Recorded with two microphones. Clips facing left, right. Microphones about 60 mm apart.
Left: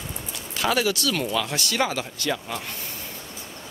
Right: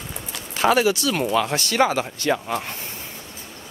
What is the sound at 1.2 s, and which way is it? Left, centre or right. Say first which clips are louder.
Speech: right 5 dB; right.